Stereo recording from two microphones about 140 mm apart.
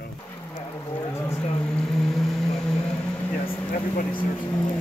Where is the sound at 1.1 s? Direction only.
20° left (ahead or behind).